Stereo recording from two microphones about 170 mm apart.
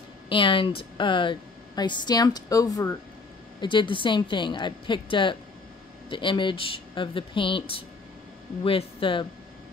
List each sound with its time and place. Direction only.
0.3 s a woman's voice: 30° left (ahead or behind)